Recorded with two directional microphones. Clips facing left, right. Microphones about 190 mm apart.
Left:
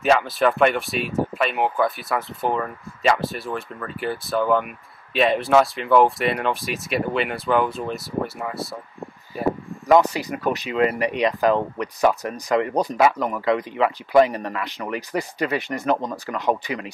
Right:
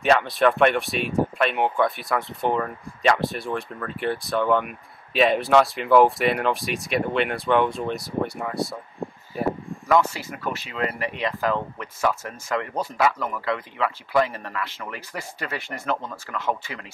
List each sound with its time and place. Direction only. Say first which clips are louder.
0.0 s speech: even; centre (ahead or behind)
9.8 s speech: left 4 dB; 15° left (ahead or behind)